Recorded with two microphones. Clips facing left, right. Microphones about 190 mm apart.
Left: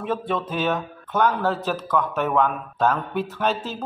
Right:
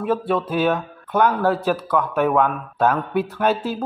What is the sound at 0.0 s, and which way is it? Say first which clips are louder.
Speech: right 5 dB; 10° right (ahead or behind).